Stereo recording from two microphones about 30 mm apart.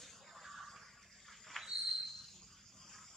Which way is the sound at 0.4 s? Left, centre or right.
Centre.